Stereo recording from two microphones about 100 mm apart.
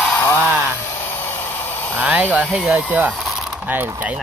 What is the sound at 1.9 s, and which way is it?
Speech, 15° right (ahead or behind).